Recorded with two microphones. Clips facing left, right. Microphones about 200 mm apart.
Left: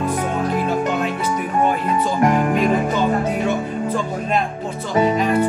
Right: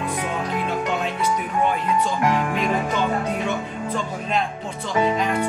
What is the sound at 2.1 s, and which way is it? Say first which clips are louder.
Music: left 5 dB; 45° left (ahead or behind).